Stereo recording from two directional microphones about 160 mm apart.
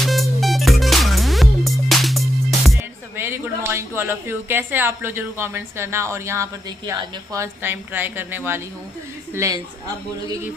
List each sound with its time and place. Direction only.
0.0 s music: centre (ahead or behind)
3.2 s a woman's voice: 15° right (ahead or behind)